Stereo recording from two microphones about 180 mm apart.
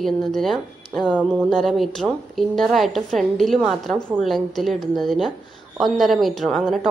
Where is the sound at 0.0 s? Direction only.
Centre (ahead or behind).